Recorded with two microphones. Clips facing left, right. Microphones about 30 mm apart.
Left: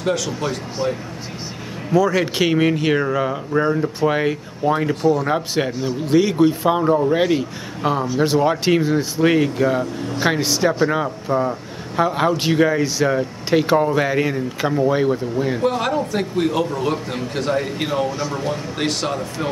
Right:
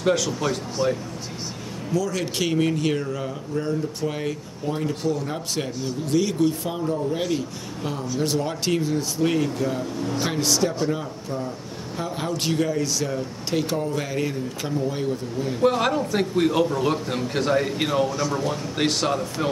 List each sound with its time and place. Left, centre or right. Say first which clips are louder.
0.0 s speech: left 1 dB; centre
1.9 s speech: left 8 dB; left
15.6 s speech: right 3 dB; centre
18.8 s speech: right 2 dB; centre